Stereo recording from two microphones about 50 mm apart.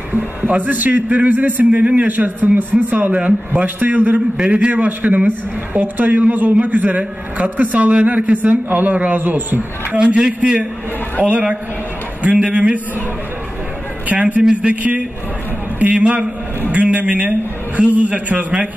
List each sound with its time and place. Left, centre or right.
0.1 s a man's voice: right
4.4 s a man's voice: right
9.9 s a man's voice: right
12.2 s a man's voice: right
14.0 s a man's voice: right